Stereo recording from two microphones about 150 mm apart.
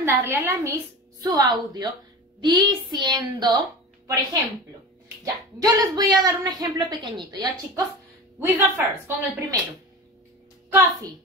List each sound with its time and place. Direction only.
0.0 s a woman's voice: 15° right (ahead or behind)
8.4 s a woman's voice: 15° right (ahead or behind)